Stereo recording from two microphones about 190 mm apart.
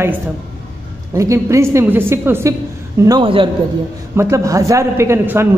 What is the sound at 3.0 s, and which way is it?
Speech, 25° right (ahead or behind).